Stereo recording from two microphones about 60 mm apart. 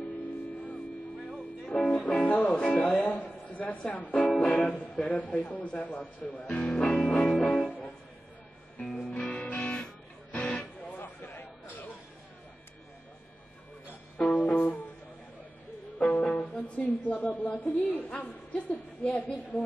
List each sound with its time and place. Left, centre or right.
1.7 s music: centre
2.1 s music: left
2.6 s speech: centre
3.1 s speech: left
6.5 s music: centre
8.8 s music: centre
11.0 s a sound: left
14.3 s music: left
16.0 s speech: centre